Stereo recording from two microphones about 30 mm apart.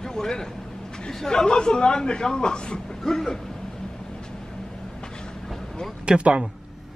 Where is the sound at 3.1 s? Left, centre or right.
Centre.